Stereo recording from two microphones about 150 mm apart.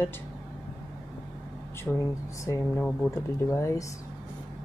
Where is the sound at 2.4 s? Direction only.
20° left (ahead or behind).